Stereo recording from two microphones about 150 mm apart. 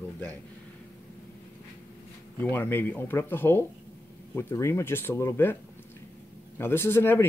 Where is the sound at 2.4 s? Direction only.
10° left (ahead or behind).